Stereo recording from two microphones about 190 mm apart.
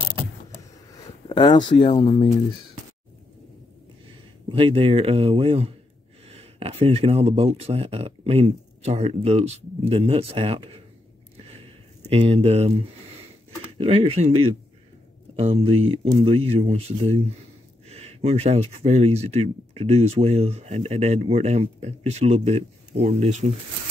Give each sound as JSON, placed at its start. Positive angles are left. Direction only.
{"t": 1.3, "sound": "speech", "side_deg": 25}
{"t": 4.5, "sound": "speech", "side_deg": -30}
{"t": 12.1, "sound": "speech", "side_deg": -30}
{"t": 13.7, "sound": "speech", "side_deg": -30}